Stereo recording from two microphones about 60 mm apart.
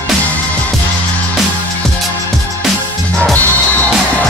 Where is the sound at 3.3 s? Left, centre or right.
Left.